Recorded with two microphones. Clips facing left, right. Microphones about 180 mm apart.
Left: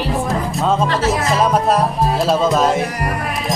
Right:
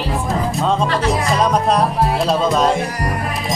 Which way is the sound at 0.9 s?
5° left (ahead or behind).